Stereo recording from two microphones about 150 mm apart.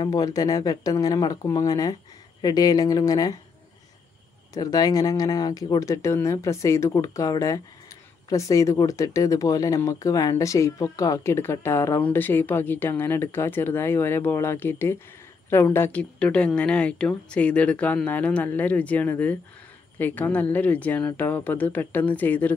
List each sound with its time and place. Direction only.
0.0 s speech: 25° left (ahead or behind)
4.6 s speech: 25° left (ahead or behind)